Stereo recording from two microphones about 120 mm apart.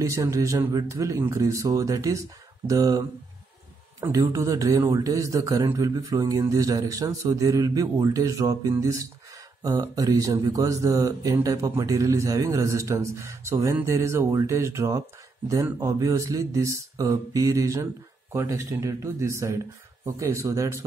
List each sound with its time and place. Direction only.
0.0 s a man's voice: 25° right (ahead or behind)